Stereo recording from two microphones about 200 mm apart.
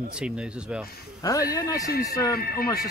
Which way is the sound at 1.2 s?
15° left (ahead or behind).